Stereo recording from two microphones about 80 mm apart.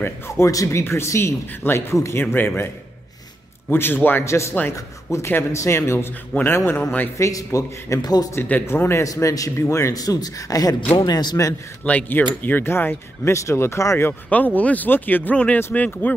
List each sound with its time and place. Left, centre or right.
0.5 s speech: left
3.7 s speech: left
4.2 s speech: left
7.2 s a man's voice: left
8.4 s speech: left
9.0 s a man's voice: left
11.0 s a man's voice: left
11.8 s speech: centre; by 14.1 s left
14.3 s speech: centre